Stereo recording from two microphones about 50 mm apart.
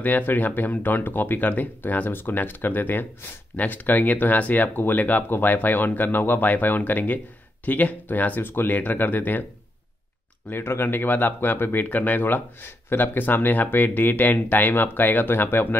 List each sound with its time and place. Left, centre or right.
0.2 s speech: left
10.5 s a man's voice: left